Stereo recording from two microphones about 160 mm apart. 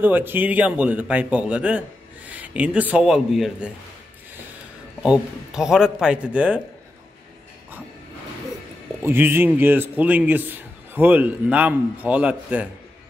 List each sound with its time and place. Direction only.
0.0 s speech: 10° right (ahead or behind)
5.0 s a man's voice: 5° right (ahead or behind)
9.0 s speech: 15° right (ahead or behind)